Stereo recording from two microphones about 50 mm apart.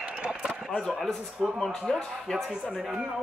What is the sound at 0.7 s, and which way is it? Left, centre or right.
Chop, centre.